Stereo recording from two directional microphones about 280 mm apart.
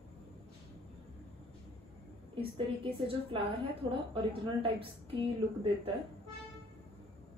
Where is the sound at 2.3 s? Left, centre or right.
Centre.